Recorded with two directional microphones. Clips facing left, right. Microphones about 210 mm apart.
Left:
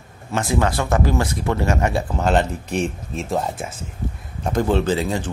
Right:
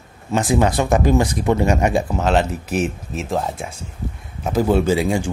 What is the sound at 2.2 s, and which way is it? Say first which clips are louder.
Speech: right 1 dB; centre (ahead or behind).